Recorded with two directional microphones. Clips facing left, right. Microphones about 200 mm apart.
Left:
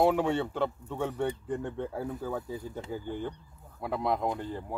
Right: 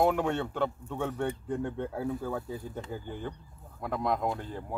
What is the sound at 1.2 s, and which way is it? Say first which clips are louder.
Speech: even; 10° right (ahead or behind).